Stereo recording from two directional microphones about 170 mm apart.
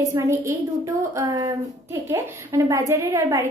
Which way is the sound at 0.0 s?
20° right (ahead or behind).